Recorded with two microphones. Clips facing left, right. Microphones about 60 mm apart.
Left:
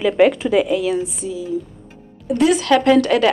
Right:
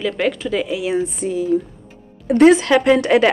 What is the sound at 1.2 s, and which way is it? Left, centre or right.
A woman's voice, right.